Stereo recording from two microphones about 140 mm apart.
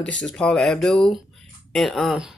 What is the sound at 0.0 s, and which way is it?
Speech, 5° left (ahead or behind).